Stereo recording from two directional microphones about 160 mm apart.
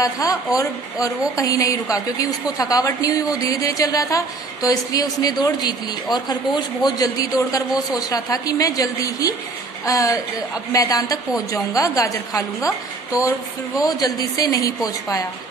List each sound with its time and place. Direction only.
0.0 s a woman's voice: 20° left (ahead or behind)
13.1 s a woman's voice: 20° left (ahead or behind)